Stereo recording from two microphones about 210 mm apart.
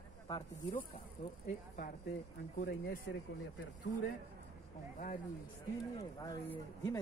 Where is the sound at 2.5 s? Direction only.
40° left (ahead or behind).